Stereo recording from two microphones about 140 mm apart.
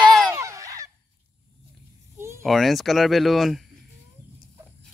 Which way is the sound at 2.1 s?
20° right (ahead or behind).